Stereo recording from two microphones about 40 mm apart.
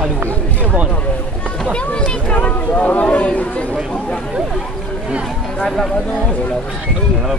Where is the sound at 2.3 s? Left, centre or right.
Left.